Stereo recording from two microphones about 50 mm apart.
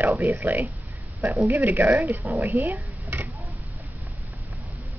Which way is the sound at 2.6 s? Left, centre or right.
Right.